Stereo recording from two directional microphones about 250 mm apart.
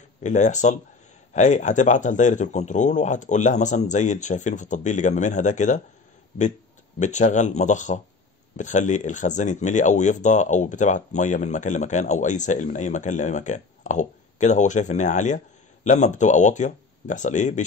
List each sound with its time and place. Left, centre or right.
0.2 s speech: left
7.0 s speech: left